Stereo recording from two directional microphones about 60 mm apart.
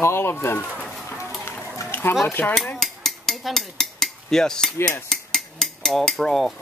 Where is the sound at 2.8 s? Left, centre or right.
Centre.